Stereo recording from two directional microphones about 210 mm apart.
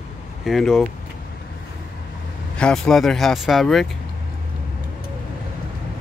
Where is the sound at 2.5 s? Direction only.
5° left (ahead or behind).